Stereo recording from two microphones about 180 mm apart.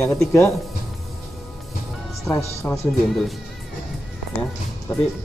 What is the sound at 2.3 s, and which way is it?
Speech, 15° left (ahead or behind).